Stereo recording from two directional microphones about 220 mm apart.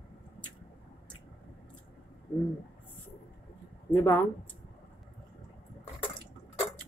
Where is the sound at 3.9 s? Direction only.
10° left (ahead or behind).